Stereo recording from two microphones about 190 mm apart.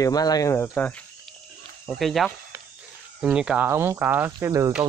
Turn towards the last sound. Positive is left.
turn(degrees=-15)  # may be behind; listen again after turning